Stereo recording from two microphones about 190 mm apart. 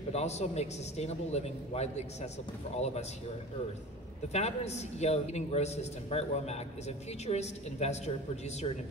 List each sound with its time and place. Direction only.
0.1 s a man's voice: 35° left (ahead or behind)
4.3 s a man's voice: 35° left (ahead or behind)